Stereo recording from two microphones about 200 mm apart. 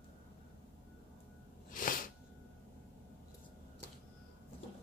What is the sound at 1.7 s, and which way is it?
Sneeze, 45° left (ahead or behind).